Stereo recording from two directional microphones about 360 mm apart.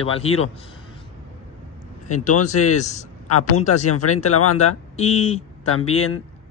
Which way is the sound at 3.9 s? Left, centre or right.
Left.